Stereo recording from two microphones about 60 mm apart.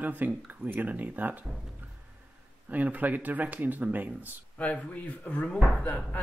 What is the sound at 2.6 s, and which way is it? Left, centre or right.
Speech, right.